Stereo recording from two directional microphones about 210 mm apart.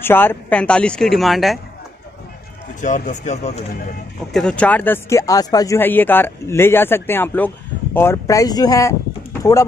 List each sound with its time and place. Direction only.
0.0 s speech: 10° left (ahead or behind)
2.8 s speech: 35° left (ahead or behind)
4.3 s speech: 5° left (ahead or behind)